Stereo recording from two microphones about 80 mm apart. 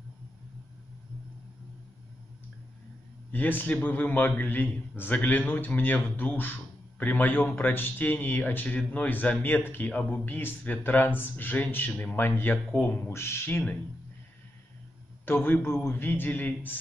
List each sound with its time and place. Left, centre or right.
3.3 s a man's voice: left
15.2 s a man's voice: left